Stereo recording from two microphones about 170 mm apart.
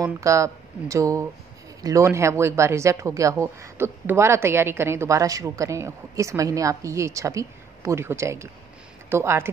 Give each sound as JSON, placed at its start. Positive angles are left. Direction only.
{"t": 0.0, "sound": "speech", "side_deg": -20}